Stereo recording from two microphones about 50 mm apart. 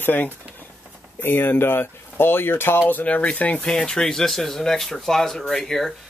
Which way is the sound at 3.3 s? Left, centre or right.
Left.